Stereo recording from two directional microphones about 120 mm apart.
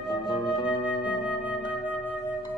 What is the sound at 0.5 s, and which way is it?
Flute, 45° left (ahead or behind).